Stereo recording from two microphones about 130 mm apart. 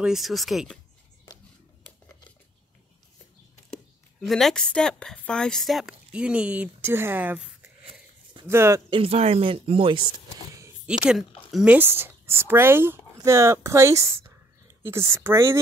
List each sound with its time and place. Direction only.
0.0 s a woman's voice: centre (ahead or behind)
4.3 s a woman's voice: centre (ahead or behind); by 7.7 s 15° right (ahead or behind)
7.8 s wheeze: 40° right (ahead or behind)
8.5 s speech: 20° right (ahead or behind)
8.9 s speech: 50° right (ahead or behind)
10.1 s a sound: 25° right (ahead or behind)
11.1 s speech: 5° right (ahead or behind)
11.7 s speech: 15° right (ahead or behind)